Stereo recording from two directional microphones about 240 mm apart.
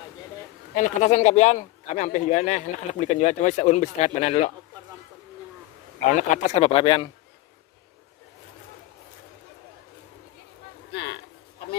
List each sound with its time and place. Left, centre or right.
0.7 s speech: left
6.1 s speech: left